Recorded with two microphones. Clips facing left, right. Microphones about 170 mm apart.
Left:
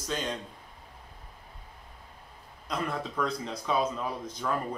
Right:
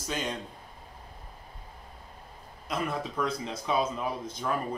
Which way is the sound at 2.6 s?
10° right (ahead or behind).